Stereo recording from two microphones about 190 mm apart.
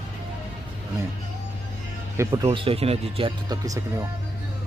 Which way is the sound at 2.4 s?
30° right (ahead or behind).